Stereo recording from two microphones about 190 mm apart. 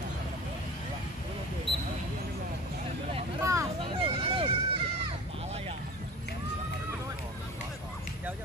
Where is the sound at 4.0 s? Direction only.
30° right (ahead or behind).